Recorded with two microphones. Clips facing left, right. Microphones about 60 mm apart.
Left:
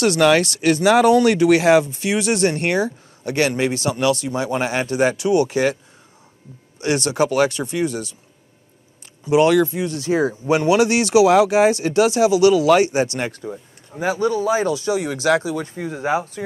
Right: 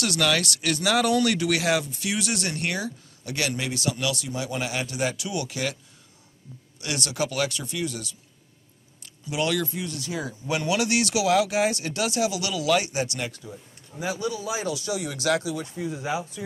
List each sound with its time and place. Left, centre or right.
0.0 s speech: left
6.8 s speech: left
9.2 s speech: left